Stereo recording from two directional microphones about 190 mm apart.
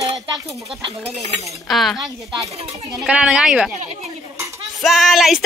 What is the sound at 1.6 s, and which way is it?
Speech, centre (ahead or behind).